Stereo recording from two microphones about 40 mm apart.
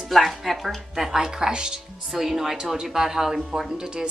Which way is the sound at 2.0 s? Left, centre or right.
Centre.